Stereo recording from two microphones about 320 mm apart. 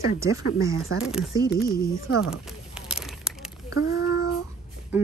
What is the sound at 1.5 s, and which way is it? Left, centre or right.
Speech, left.